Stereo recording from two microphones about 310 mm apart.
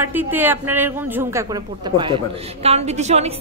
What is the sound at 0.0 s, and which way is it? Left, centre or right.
A woman's voice, centre.